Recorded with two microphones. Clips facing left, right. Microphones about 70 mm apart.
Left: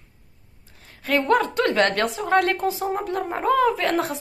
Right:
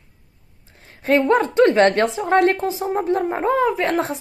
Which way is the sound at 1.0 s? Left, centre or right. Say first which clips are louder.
Right 4 dB; right.